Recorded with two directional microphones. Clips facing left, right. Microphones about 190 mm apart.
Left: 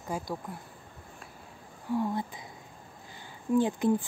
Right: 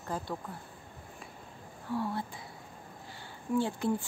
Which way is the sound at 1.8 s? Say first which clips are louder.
Left 4 dB; 15° left (ahead or behind).